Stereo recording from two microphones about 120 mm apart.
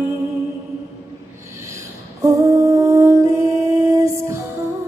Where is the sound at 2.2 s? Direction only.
25° right (ahead or behind).